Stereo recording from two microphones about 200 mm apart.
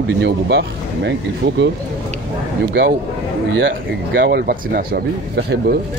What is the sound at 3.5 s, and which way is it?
Speech, 65° right (ahead or behind).